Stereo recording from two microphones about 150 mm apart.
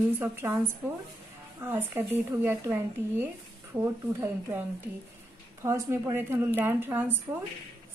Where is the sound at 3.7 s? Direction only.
15° right (ahead or behind).